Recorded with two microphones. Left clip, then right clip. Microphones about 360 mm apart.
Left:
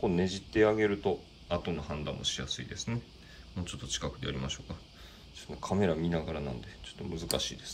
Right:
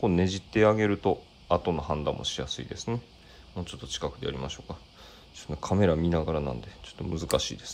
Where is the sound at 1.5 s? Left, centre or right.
Centre.